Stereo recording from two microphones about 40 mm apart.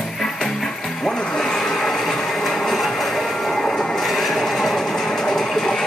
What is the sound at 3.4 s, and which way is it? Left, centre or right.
Train, centre.